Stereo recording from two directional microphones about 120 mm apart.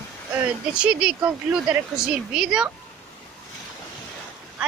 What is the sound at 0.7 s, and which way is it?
Speech, 5° right (ahead or behind).